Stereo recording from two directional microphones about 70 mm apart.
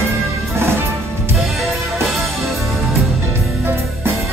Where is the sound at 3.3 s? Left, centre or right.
Right.